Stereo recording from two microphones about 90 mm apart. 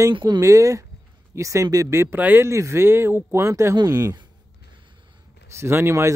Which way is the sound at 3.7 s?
45° right (ahead or behind).